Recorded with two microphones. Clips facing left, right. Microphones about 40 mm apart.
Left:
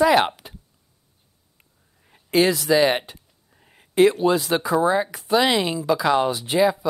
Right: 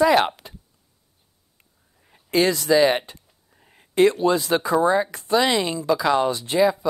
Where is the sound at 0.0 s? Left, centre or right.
Centre.